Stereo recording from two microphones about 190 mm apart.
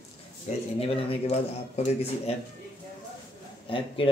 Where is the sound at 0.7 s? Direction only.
30° left (ahead or behind).